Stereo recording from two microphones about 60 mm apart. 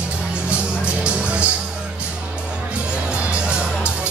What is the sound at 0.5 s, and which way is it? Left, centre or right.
Music, centre.